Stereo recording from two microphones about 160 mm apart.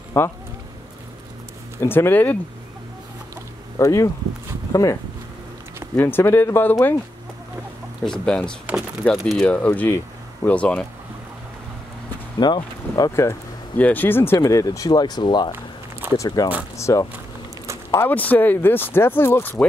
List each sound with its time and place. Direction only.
0.2 s speech: 15° left (ahead or behind)
1.8 s speech: 15° left (ahead or behind)
3.7 s speech: 20° left (ahead or behind)
5.9 s speech: 15° left (ahead or behind)
8.0 s speech: 5° left (ahead or behind)
12.4 s speech: 25° left (ahead or behind)